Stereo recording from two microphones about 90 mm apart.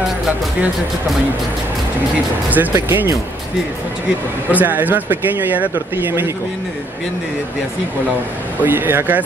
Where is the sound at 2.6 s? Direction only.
30° right (ahead or behind).